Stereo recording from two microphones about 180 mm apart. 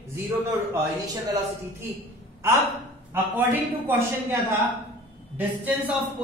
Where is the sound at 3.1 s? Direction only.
10° right (ahead or behind).